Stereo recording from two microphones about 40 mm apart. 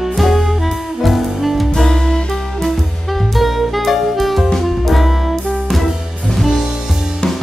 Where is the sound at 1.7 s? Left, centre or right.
Centre.